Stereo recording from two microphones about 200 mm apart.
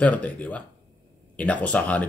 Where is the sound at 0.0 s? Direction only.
5° left (ahead or behind).